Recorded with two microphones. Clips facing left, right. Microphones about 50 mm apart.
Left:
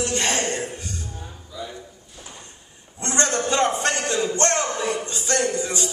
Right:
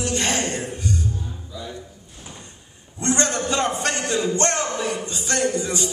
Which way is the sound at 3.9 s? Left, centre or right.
Right.